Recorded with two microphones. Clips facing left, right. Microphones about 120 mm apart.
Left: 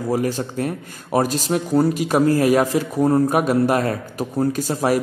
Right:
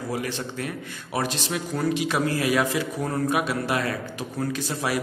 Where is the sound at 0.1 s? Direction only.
40° left (ahead or behind).